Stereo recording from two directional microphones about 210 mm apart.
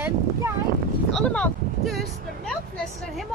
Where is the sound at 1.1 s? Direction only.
5° left (ahead or behind).